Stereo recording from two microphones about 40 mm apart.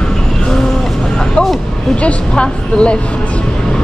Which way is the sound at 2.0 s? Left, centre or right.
Left.